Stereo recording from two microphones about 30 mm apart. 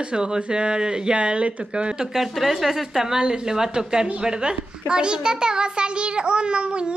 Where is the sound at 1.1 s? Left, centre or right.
Right.